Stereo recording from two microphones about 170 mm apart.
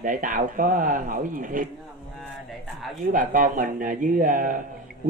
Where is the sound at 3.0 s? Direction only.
55° right (ahead or behind).